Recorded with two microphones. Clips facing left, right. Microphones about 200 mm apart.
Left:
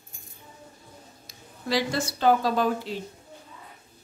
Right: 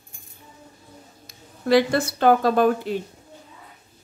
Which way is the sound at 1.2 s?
55° right (ahead or behind).